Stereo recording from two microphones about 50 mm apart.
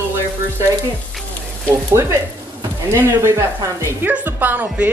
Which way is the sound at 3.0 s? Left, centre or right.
Right.